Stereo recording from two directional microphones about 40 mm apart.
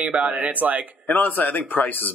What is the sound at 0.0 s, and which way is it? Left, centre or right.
Speech, right.